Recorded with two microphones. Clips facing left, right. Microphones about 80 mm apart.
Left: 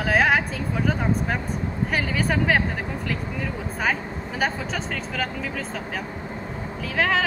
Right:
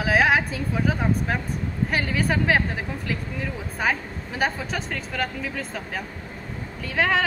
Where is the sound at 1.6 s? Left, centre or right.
Left.